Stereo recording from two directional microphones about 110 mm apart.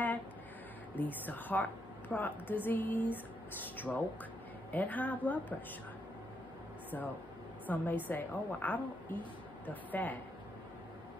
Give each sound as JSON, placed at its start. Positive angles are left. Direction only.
{"t": 0.9, "sound": "a woman's voice", "side_deg": 15}
{"t": 7.6, "sound": "a woman's voice", "side_deg": 15}